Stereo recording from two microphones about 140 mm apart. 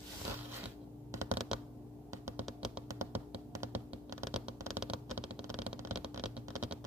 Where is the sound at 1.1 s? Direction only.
20° right (ahead or behind).